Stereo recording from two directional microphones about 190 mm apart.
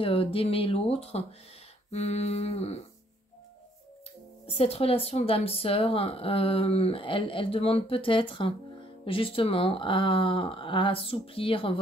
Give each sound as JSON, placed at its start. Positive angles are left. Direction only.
{"t": 0.0, "sound": "speech", "side_deg": 30}
{"t": 1.9, "sound": "humming", "side_deg": 35}
{"t": 4.5, "sound": "speech", "side_deg": 30}